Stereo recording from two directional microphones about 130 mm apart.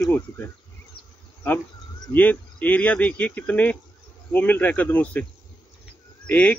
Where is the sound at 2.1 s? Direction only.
15° left (ahead or behind).